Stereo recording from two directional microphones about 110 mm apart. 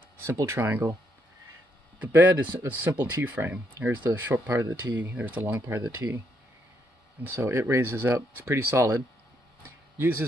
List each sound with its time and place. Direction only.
0.2 s speech: 25° right (ahead or behind)
2.0 s speech: 15° right (ahead or behind)
7.2 s speech: 20° right (ahead or behind)